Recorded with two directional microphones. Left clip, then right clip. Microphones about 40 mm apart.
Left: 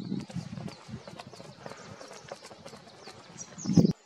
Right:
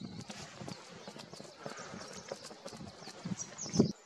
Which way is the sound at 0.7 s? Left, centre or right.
Left.